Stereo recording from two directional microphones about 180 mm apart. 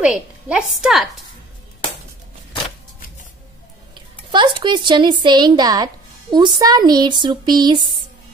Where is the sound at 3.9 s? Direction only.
25° right (ahead or behind).